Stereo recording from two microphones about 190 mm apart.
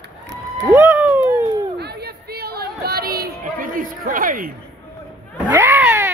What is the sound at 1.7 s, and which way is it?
Chatter, 60° right (ahead or behind).